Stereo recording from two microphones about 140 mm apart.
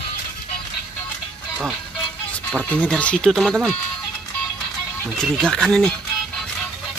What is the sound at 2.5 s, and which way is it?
Speech, 10° left (ahead or behind).